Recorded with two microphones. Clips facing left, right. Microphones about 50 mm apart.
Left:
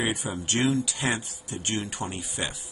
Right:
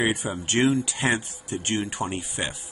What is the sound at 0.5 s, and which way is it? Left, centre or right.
Speech, right.